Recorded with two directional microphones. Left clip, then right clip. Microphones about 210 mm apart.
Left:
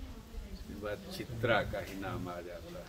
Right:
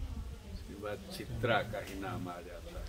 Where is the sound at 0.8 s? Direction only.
Centre (ahead or behind).